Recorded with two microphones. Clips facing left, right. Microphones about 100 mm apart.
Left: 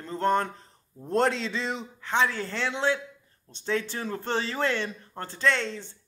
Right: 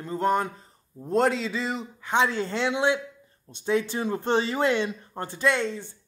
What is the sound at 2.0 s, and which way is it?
Speech, 20° right (ahead or behind).